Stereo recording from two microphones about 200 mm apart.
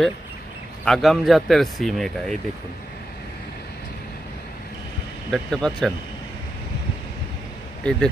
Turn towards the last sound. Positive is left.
turn(degrees=5)  # may be behind; listen again after turning